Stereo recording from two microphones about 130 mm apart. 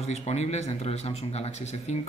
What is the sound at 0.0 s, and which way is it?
A man's voice, 55° left (ahead or behind).